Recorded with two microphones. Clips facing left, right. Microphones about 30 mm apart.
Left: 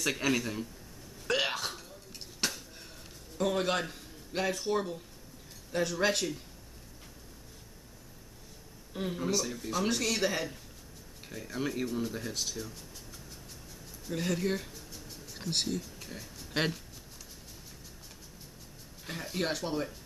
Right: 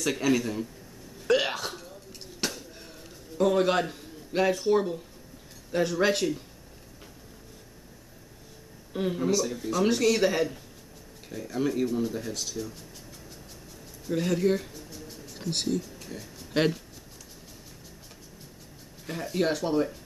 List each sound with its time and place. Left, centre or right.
0.0 s speech: centre
1.2 s hiccup: centre
2.4 s a sound: centre
5.7 s speech: centre
8.9 s speech: centre
11.2 s speech: centre
14.0 s a sound: centre
16.2 s speech: centre
19.1 s speech: centre